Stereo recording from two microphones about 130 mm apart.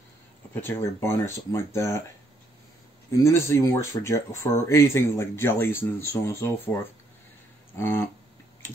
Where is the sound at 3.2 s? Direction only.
20° left (ahead or behind).